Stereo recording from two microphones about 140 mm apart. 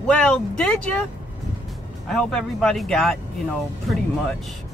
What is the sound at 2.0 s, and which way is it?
Speech, 5° left (ahead or behind).